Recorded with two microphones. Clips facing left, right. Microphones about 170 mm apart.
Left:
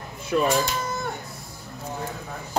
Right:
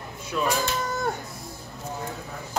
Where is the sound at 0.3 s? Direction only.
55° left (ahead or behind).